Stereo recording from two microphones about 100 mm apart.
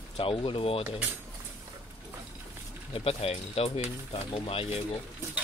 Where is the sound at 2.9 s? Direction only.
80° left.